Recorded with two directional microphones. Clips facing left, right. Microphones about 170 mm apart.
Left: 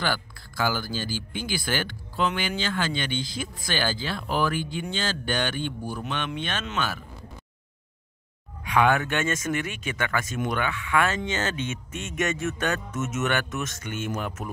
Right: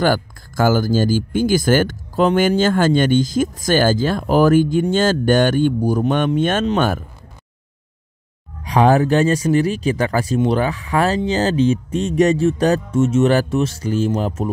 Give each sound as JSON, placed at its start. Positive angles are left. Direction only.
{"t": 0.0, "sound": "speech", "side_deg": -45}
{"t": 8.6, "sound": "speech", "side_deg": -35}